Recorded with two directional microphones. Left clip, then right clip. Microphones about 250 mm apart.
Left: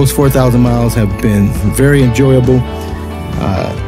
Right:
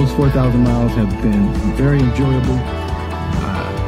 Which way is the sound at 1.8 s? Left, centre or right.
Left.